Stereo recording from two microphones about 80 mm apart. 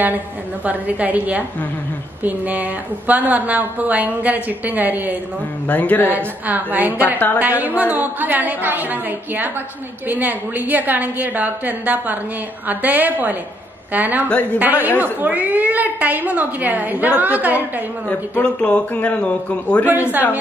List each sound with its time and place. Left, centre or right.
0.7 s a woman's voice: centre
5.7 s speech: left
6.0 s a woman's voice: right
18.4 s a man's voice: centre
19.9 s a woman's voice: right